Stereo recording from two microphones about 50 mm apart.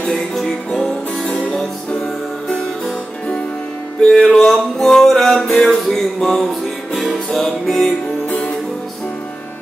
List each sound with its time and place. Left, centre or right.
0.1 s music: centre
4.0 s music: centre
8.3 s music: left